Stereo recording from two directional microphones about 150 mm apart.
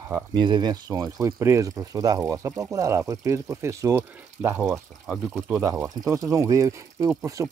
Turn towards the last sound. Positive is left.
turn(degrees=-20)  # may be behind; listen again after turning